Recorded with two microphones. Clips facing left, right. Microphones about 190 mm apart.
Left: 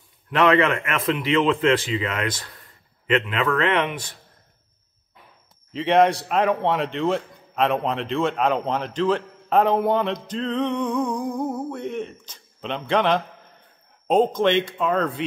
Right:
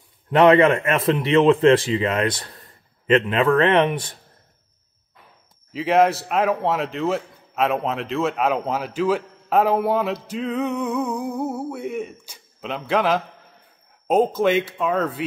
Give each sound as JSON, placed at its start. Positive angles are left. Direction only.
{"t": 0.4, "sound": "a man's voice", "side_deg": -30}
{"t": 5.7, "sound": "a man's voice", "side_deg": -5}